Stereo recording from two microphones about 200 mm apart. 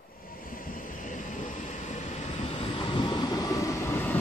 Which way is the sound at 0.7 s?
40° left (ahead or behind).